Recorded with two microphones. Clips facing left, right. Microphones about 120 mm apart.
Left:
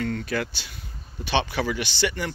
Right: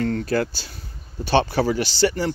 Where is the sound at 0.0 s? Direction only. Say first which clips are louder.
Right 5 dB; 35° right (ahead or behind).